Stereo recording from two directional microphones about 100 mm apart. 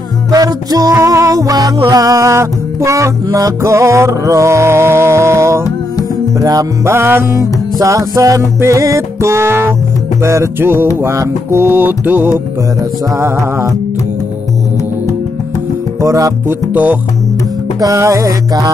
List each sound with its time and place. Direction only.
0.3 s music: 40° right (ahead or behind)
11.7 s music: 20° right (ahead or behind)
13.1 s music: 30° right (ahead or behind)
16.0 s music: 35° right (ahead or behind)
16.4 s music: 15° right (ahead or behind)
17.7 s music: 35° right (ahead or behind)